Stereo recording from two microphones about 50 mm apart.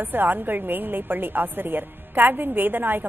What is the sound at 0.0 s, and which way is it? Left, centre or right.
A woman's voice, right.